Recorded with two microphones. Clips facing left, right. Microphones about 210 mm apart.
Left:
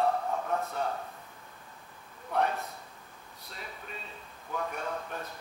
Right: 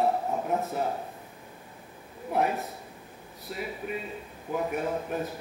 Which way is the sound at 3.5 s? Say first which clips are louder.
Right 11 dB; 10° right (ahead or behind).